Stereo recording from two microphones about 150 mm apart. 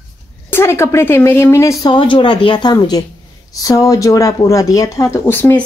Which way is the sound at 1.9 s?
35° left (ahead or behind).